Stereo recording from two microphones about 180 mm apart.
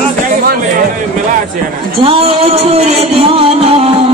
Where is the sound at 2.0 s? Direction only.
35° right (ahead or behind).